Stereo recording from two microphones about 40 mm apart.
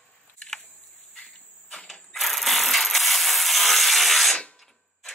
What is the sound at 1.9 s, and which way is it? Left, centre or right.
Ratchet, centre.